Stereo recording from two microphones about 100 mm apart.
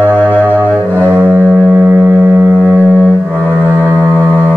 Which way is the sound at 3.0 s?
5° right (ahead or behind).